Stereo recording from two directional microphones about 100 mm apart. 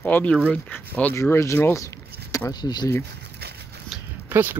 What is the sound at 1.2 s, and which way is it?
Speech, 30° left (ahead or behind).